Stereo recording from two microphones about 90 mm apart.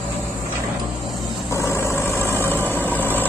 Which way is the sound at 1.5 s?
30° left (ahead or behind).